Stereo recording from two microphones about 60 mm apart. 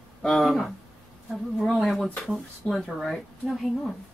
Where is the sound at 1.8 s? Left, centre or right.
Centre.